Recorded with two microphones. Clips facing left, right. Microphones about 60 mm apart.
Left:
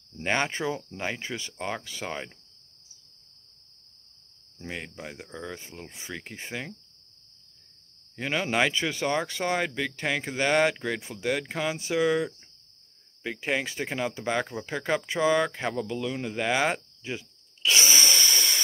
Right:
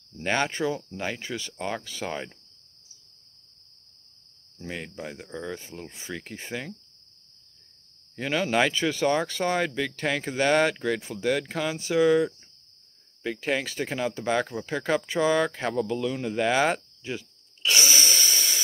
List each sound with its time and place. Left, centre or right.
0.2 s speech: centre
2.0 s speech: centre
4.6 s speech: centre
8.2 s speech: centre
10.7 s speech: centre
17.7 s a sound: left